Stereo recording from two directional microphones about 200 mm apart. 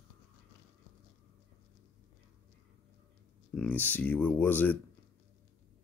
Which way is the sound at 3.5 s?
10° left (ahead or behind).